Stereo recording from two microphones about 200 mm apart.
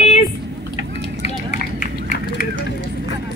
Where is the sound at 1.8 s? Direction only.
40° left (ahead or behind).